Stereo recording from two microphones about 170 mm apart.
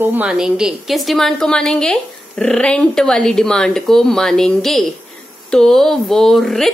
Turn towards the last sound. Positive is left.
turn(degrees=0)  # may be behind; listen again after turning